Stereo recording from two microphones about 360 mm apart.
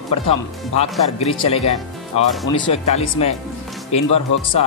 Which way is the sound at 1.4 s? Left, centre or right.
Centre.